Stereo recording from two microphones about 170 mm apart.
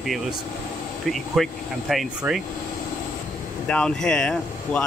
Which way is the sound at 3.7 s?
5° left (ahead or behind).